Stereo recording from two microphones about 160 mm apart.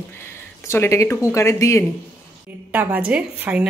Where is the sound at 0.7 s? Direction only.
20° left (ahead or behind).